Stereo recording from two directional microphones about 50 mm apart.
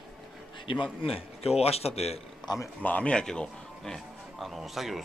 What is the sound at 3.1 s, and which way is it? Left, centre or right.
Speech, centre.